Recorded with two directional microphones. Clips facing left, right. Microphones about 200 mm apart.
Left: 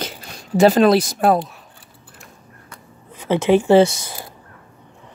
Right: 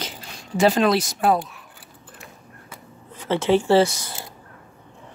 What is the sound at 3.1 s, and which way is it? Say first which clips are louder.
Speech: left 4 dB; 15° left (ahead or behind).